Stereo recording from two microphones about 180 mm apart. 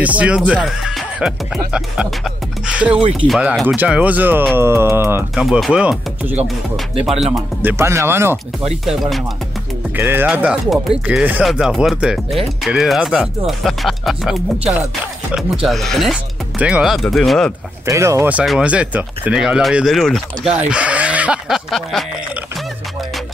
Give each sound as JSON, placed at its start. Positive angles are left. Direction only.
{"t": 0.0, "sound": "speech", "side_deg": -10}
{"t": 5.4, "sound": "speech", "side_deg": 0}
{"t": 7.3, "sound": "speech", "side_deg": -15}
{"t": 9.9, "sound": "speech", "side_deg": -10}
{"t": 15.6, "sound": "speech", "side_deg": 0}
{"t": 17.8, "sound": "speech", "side_deg": -15}